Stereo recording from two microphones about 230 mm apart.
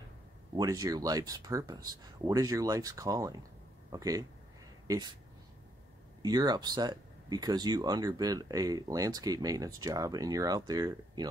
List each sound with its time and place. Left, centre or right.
0.6 s speech: centre
6.2 s speech: centre